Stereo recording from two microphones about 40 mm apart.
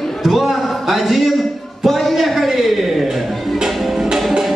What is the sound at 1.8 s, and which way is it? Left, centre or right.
Music, centre.